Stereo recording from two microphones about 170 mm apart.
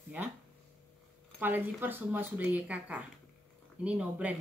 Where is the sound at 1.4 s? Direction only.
10° right (ahead or behind).